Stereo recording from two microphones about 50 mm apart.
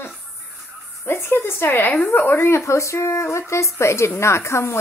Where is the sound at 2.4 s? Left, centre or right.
Left.